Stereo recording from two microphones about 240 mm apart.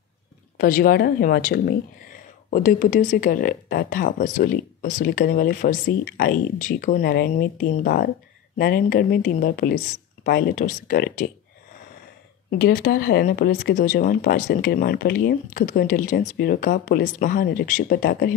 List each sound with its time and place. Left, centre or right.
0.6 s speech: left
12.4 s speech: left